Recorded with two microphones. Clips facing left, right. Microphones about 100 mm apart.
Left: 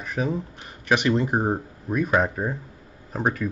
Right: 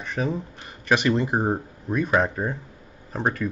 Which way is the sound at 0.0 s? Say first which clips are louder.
Even; 5° left (ahead or behind).